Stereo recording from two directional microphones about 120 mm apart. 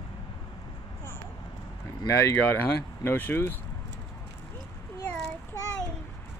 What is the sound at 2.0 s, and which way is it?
Speech, 25° left (ahead or behind).